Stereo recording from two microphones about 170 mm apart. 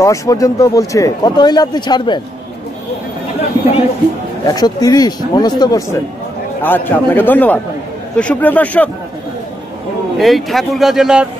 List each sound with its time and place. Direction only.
0.0 s speech: 20° left (ahead or behind)
4.5 s speech: 20° left (ahead or behind)
10.1 s speech: centre (ahead or behind)